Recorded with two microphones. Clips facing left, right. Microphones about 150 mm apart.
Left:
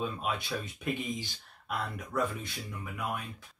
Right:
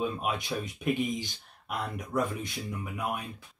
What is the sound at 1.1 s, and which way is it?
Speech, 20° right (ahead or behind).